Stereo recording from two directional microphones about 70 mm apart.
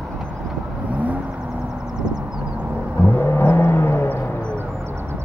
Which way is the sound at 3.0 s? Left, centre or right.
Left.